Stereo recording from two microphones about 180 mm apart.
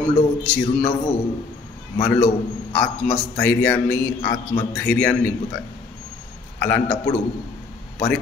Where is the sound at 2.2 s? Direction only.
10° left (ahead or behind).